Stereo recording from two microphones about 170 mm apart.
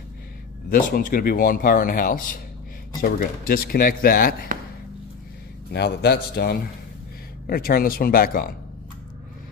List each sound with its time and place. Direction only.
0.7 s speech: 55° left (ahead or behind)
5.7 s a man's voice: 75° left (ahead or behind); by 8.5 s 55° left (ahead or behind)